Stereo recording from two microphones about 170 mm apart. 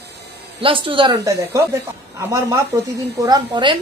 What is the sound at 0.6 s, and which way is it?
A woman's voice, 30° right (ahead or behind).